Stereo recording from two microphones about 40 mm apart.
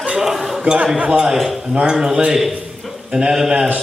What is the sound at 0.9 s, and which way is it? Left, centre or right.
Speech, right.